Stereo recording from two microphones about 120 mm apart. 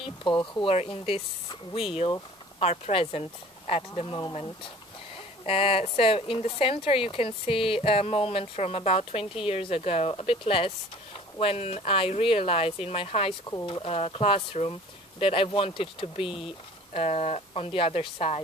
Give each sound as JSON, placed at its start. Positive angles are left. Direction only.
{"t": 0.0, "sound": "speech", "side_deg": 40}
{"t": 0.7, "sound": "speech", "side_deg": 55}